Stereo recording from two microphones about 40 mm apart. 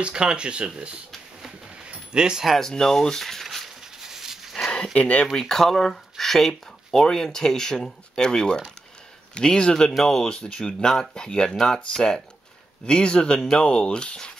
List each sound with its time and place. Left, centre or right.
0.0 s speech: right
2.1 s speech: centre
2.6 s speech: centre
3.4 s a sound: centre
4.9 s speech: left
5.4 s speech: centre